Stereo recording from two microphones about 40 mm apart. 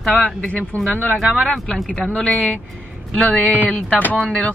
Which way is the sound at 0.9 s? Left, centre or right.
Left.